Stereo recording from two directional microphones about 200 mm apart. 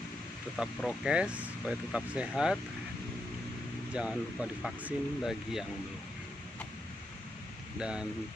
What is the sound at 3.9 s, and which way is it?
Speech, 5° right (ahead or behind).